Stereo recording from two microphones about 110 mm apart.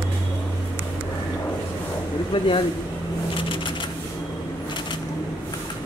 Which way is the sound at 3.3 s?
50° left (ahead or behind).